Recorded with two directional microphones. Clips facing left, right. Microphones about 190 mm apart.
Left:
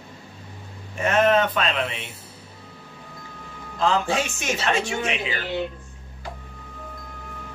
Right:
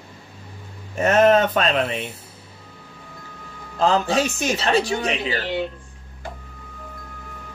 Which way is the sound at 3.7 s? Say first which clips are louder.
Right 3 dB; 40° right (ahead or behind).